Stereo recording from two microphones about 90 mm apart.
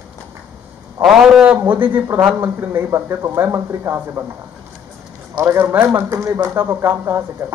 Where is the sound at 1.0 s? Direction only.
Centre (ahead or behind).